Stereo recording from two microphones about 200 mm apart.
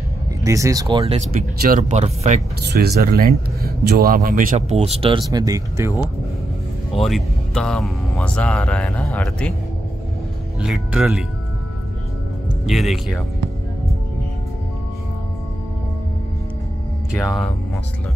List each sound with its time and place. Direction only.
0.4 s speech: 15° right (ahead or behind); by 2.4 s 35° right (ahead or behind)
2.7 s speech: 55° right (ahead or behind); by 5.9 s 15° right (ahead or behind)
7.1 s speech: centre (ahead or behind)
10.6 s speech: 5° right (ahead or behind)
12.6 s speech: centre (ahead or behind)
17.2 s speech: centre (ahead or behind)